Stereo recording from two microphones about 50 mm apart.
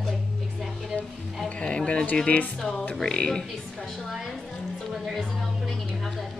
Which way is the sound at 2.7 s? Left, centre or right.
Left.